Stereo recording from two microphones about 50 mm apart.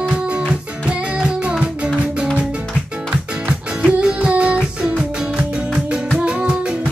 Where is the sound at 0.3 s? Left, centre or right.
Right.